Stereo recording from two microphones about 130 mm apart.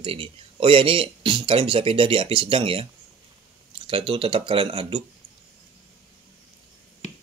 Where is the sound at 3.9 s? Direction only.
40° right (ahead or behind).